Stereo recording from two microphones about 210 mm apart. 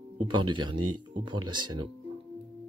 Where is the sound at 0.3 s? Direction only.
20° right (ahead or behind).